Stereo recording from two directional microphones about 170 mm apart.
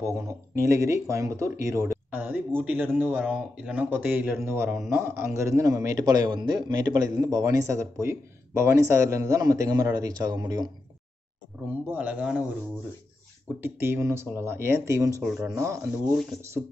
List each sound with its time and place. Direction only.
0.0 s speech: 15° right (ahead or behind)
11.7 s speech: 10° right (ahead or behind)
13.7 s speech: 15° right (ahead or behind)